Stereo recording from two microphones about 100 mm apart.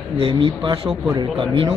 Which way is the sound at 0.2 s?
60° right (ahead or behind).